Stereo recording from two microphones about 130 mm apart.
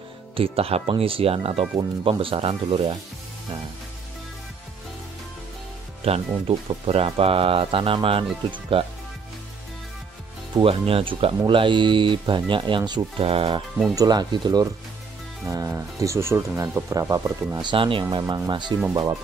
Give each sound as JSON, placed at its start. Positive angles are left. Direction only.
{"t": 0.4, "sound": "speech", "side_deg": -50}
{"t": 6.0, "sound": "speech", "side_deg": -50}
{"t": 10.5, "sound": "speech", "side_deg": -45}
{"t": 13.9, "sound": "speech", "side_deg": -35}
{"t": 17.6, "sound": "speech", "side_deg": -40}